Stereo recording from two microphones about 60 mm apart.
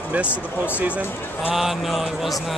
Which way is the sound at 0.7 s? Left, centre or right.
Right.